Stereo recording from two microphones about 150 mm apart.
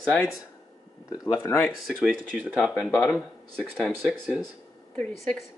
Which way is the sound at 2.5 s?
5° left (ahead or behind).